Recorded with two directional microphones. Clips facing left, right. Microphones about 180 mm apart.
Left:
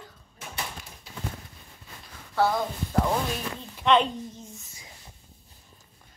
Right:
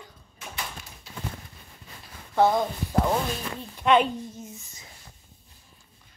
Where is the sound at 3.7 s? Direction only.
5° right (ahead or behind).